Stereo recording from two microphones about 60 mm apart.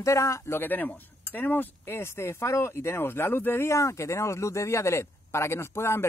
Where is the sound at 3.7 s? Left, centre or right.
Left.